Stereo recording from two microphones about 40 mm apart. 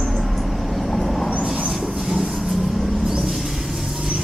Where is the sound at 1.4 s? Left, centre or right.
Centre.